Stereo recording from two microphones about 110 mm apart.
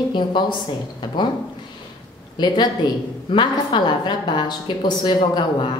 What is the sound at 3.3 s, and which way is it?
A woman's voice, 45° left (ahead or behind).